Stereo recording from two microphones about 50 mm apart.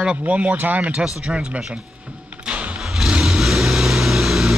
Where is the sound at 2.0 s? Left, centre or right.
Right.